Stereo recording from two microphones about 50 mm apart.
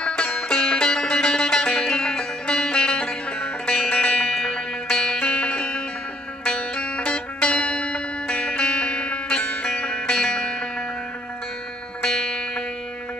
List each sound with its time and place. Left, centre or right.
0.0 s music: centre
12.0 s music: centre